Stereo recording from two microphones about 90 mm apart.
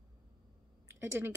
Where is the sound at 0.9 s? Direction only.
25° right (ahead or behind).